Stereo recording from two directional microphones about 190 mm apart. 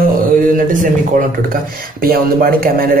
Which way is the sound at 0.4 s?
45° right (ahead or behind).